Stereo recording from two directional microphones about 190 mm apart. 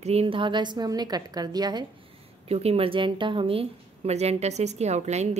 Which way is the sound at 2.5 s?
30° right (ahead or behind).